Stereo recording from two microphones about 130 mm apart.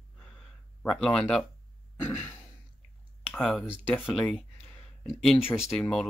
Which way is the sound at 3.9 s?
15° left (ahead or behind).